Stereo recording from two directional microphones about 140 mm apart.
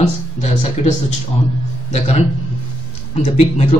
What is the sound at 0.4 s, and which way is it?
Speech, 55° left (ahead or behind).